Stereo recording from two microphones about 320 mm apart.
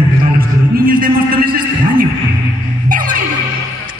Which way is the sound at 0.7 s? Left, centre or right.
Right.